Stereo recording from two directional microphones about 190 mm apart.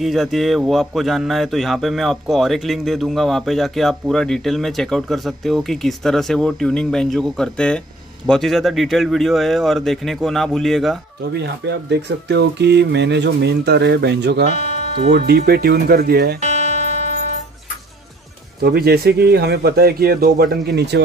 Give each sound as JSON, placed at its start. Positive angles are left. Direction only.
{"t": 0.0, "sound": "speech", "side_deg": 0}
{"t": 11.3, "sound": "speech", "side_deg": -60}
{"t": 14.5, "sound": "music", "side_deg": 40}
{"t": 15.1, "sound": "speech", "side_deg": -55}
{"t": 18.6, "sound": "speech", "side_deg": -55}